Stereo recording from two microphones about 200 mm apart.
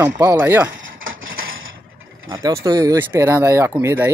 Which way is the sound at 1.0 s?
75° right (ahead or behind).